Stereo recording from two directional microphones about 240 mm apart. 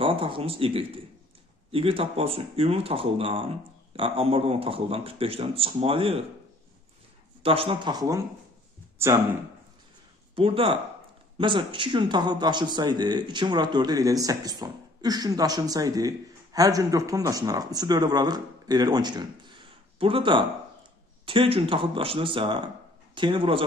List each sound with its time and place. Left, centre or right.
0.0 s speech: right
7.4 s speech: right
10.3 s a man's voice: right